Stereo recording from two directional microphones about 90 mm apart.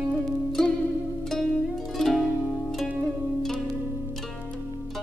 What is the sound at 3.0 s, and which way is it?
Zither, 5° left (ahead or behind).